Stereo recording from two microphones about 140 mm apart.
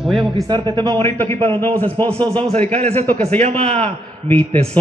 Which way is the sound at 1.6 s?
15° left (ahead or behind).